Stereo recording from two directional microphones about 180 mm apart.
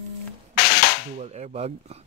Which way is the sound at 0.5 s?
55° left (ahead or behind).